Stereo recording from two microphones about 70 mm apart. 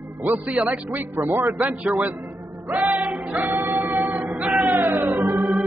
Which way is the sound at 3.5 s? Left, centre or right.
Right.